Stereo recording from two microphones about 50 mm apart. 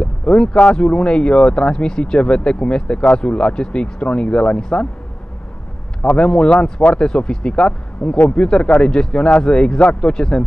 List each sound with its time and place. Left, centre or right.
0.0 s speech: centre
6.0 s speech: centre